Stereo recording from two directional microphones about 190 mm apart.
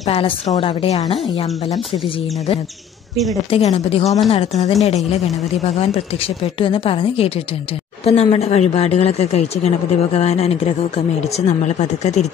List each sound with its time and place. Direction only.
0.0 s a woman's voice: 30° left (ahead or behind)
3.4 s speech: 30° left (ahead or behind)